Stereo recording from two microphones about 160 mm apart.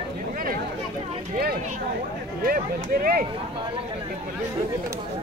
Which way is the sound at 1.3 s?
75° right (ahead or behind).